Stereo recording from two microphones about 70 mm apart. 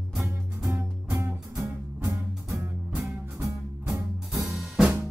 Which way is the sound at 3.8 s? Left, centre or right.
Centre.